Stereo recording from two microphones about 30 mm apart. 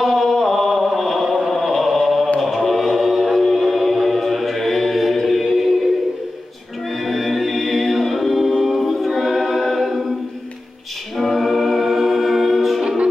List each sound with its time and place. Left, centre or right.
0.0 s chant: centre
2.4 s music: centre
7.1 s a capella: centre
11.1 s music: centre
12.8 s music: right